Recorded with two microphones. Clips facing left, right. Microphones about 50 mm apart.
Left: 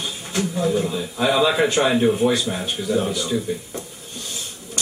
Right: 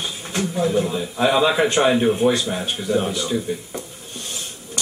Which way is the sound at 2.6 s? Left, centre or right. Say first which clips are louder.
Even; right.